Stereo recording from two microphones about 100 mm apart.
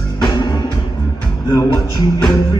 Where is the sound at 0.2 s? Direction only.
50° left (ahead or behind).